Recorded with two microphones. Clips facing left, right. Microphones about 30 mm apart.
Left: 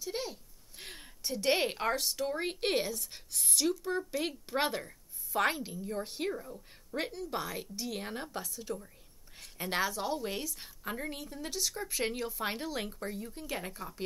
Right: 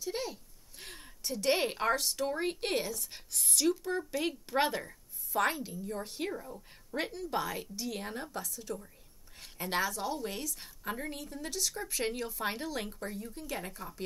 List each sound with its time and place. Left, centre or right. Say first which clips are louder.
0.0 s a woman's voice: right 1 dB; centre